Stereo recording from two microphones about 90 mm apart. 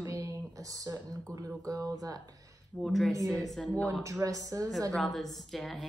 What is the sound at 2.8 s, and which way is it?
A woman's voice, 5° left (ahead or behind).